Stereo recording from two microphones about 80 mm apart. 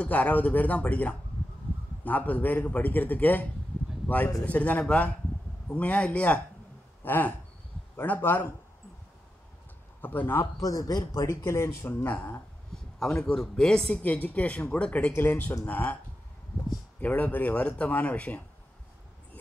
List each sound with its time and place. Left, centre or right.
0.0 s a man's voice: centre
4.5 s a man's voice: centre
10.0 s a man's voice: left
10.4 s a man's voice: left
12.7 s a man's voice: centre
17.0 s a man's voice: centre